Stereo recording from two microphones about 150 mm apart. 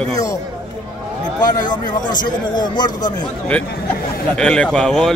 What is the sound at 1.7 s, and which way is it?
Speech, 30° left (ahead or behind).